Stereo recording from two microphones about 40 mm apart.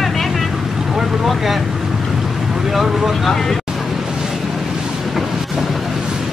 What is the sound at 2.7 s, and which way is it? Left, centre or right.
Speech, centre.